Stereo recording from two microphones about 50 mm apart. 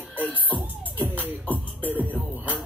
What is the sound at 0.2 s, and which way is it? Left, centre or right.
Music, right.